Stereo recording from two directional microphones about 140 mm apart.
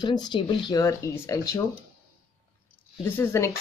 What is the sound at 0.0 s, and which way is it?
Speech, 30° left (ahead or behind).